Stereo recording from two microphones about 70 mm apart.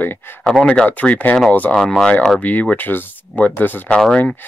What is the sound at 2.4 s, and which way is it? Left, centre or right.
Speech, left.